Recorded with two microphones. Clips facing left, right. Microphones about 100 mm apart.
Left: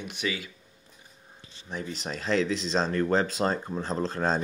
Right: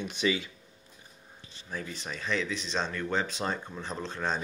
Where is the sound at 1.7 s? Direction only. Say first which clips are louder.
Left 4 dB; 25° left (ahead or behind).